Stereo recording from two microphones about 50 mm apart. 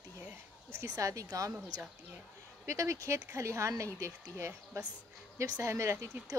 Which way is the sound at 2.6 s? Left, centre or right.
Right.